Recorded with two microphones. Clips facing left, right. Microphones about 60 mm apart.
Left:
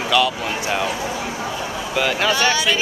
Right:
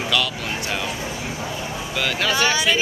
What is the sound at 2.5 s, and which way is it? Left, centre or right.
Speech, centre.